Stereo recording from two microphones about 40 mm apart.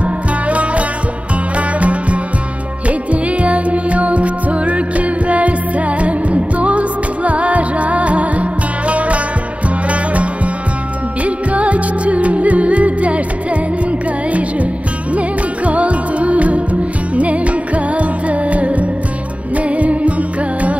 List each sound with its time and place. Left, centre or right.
0.0 s music: right
15.1 s music: right